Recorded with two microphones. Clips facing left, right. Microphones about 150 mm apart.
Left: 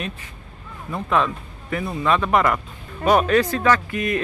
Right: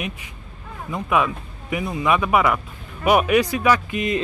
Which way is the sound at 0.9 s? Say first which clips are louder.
Even; 10° right (ahead or behind).